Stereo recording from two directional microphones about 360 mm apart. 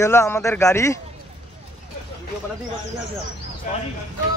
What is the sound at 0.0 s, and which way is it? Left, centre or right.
Speech, centre.